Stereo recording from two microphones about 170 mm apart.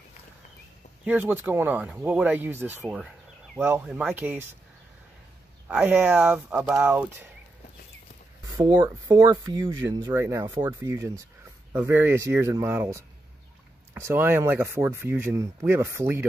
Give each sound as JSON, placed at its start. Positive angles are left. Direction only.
{"t": 1.0, "sound": "speech", "side_deg": -10}
{"t": 5.7, "sound": "speech", "side_deg": -10}
{"t": 8.5, "sound": "speech", "side_deg": -20}